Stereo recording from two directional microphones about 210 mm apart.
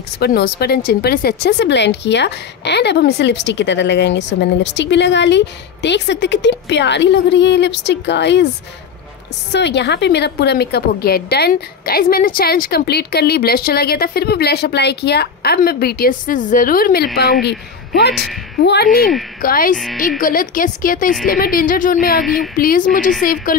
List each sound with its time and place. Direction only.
0.2 s speech: 50° left (ahead or behind)
9.5 s a woman's voice: 55° left (ahead or behind)